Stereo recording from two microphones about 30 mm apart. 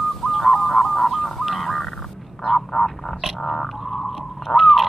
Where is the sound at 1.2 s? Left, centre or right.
Centre.